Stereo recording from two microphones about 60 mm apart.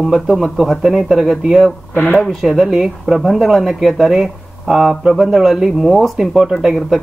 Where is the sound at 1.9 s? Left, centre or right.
Left.